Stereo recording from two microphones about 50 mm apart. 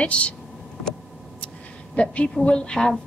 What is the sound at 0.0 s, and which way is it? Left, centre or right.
Speech, left.